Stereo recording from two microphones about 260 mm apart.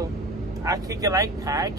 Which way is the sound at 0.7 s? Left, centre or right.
Centre.